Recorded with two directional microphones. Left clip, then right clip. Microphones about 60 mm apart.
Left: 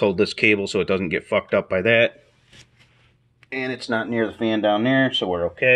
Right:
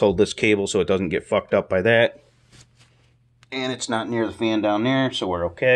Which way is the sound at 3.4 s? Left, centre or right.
Centre.